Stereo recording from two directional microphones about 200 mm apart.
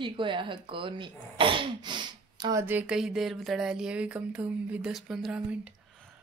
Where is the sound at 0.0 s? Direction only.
25° right (ahead or behind).